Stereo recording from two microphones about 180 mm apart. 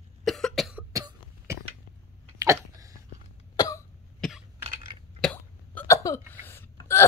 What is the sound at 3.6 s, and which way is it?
Cough, 20° left (ahead or behind).